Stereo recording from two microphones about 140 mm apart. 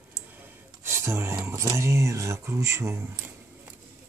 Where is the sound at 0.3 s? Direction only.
15° right (ahead or behind).